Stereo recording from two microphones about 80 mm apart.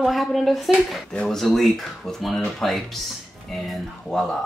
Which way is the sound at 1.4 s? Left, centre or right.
Centre.